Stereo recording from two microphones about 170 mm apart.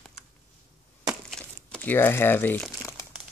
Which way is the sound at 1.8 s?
10° left (ahead or behind).